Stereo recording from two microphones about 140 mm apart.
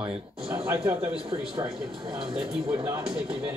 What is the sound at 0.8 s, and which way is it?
Speech, 15° right (ahead or behind).